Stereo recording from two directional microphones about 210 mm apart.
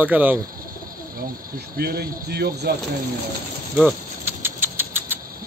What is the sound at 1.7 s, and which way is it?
Speech, 50° right (ahead or behind).